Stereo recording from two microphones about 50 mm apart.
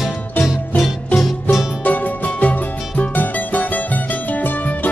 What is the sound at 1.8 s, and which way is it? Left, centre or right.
Music, left.